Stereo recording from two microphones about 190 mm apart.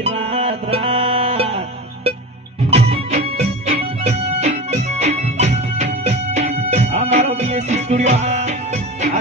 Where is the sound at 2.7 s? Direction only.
35° right (ahead or behind).